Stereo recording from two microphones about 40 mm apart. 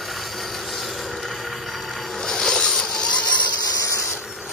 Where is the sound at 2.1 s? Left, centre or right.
Centre.